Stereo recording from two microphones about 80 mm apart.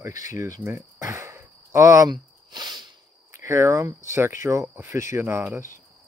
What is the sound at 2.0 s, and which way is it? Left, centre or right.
Speech, right.